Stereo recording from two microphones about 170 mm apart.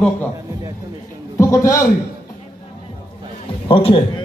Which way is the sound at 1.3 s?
15° left (ahead or behind).